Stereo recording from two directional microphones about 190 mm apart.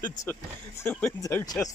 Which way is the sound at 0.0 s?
15° left (ahead or behind).